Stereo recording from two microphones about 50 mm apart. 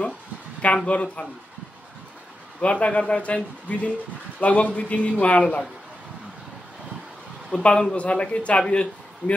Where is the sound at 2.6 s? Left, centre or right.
Left.